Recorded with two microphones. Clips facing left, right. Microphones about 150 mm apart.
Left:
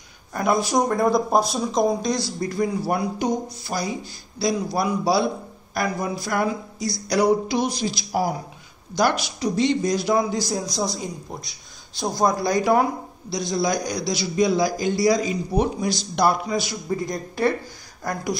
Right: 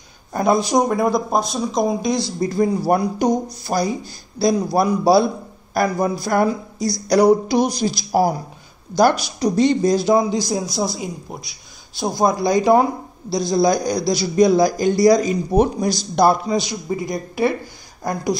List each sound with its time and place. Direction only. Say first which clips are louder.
0.3 s speech: right 4 dB; 25° right (ahead or behind); by 2.0 s centre (ahead or behind)
2.5 s a man's voice: right 6 dB; 35° right (ahead or behind)
10.7 s speech: right 3 dB; 10° right (ahead or behind)
13.3 s a man's voice: right 6 dB; 35° right (ahead or behind)
16.5 s speech: right 3 dB; 15° right (ahead or behind)
18.0 s speech: right 5 dB; 20° right (ahead or behind)